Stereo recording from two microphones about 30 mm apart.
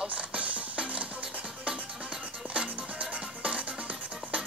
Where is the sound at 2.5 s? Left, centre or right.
Right.